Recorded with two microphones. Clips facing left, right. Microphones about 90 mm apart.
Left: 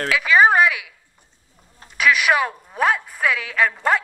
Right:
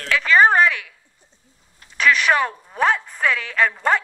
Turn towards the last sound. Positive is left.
turn(degrees=0)  # may be behind; listen again after turning